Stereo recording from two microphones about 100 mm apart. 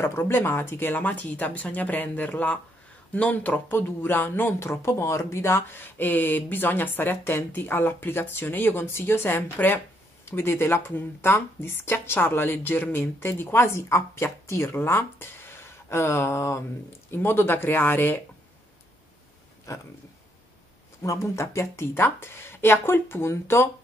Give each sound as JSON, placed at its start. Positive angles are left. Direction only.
{"t": 0.0, "sound": "speech", "side_deg": 25}
{"t": 19.7, "sound": "speech", "side_deg": 30}
{"t": 21.0, "sound": "speech", "side_deg": 30}